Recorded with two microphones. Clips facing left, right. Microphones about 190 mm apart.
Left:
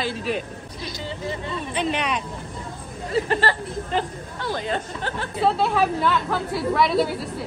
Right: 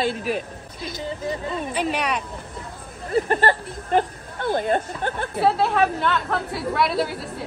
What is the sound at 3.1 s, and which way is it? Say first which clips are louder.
Speech: right 2 dB; 50° right (ahead or behind).